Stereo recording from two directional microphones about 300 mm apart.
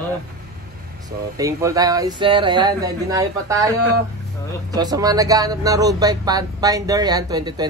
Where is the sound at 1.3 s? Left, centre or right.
Centre.